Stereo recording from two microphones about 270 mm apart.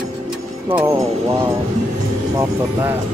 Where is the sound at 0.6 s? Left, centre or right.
Centre.